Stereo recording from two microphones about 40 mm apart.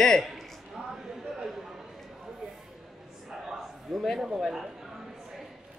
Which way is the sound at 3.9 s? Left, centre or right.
Centre.